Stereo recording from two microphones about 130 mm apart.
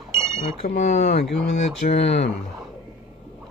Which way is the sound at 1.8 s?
90° left.